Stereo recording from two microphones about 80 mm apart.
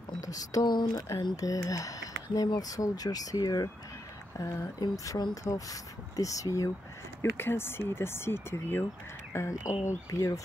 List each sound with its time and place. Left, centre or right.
0.2 s speech: left
1.3 s speech: left
7.2 s speech: left
9.3 s speech: left